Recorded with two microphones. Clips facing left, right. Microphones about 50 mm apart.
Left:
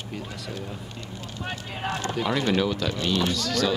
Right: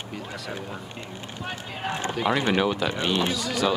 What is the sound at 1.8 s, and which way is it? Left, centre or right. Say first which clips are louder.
Speech: right 1 dB; right.